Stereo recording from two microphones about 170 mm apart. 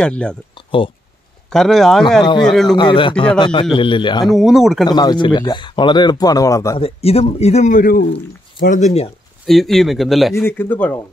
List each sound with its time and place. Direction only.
0.0 s speech: 5° left (ahead or behind)
0.7 s speech: 30° left (ahead or behind)
1.5 s speech: centre (ahead or behind)
2.2 s speech: 25° left (ahead or behind)
2.5 s speech: centre (ahead or behind)
2.8 s speech: 30° left (ahead or behind)
4.3 s speech: centre (ahead or behind)
4.8 s speech: 25° left (ahead or behind)
6.8 s speech: 35° left (ahead or behind); by 8.0 s 50° left (ahead or behind)
8.7 s speech: 40° left (ahead or behind)
9.5 s speech: centre (ahead or behind)
10.3 s speech: 10° left (ahead or behind)